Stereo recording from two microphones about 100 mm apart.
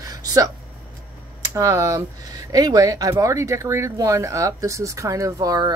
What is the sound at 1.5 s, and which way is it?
Speech, 35° right (ahead or behind).